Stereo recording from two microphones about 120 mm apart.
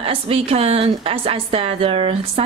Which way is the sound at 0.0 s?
55° right (ahead or behind).